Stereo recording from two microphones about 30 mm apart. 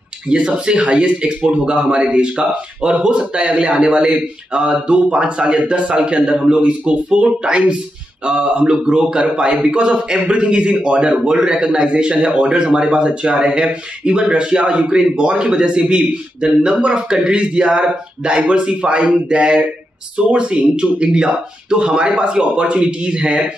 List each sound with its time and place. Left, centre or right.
0.3 s speech: right
0.7 s a man's voice: right
9.0 s a man's voice: right